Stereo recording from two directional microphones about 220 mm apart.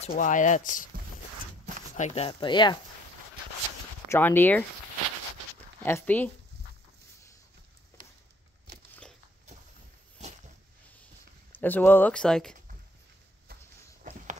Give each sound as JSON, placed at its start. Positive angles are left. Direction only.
{"t": 0.0, "sound": "speech", "side_deg": 35}
{"t": 2.0, "sound": "speech", "side_deg": 30}
{"t": 4.1, "sound": "speech", "side_deg": 10}
{"t": 5.8, "sound": "speech", "side_deg": 10}
{"t": 11.6, "sound": "speech", "side_deg": 10}
{"t": 13.5, "sound": "a sound", "side_deg": -45}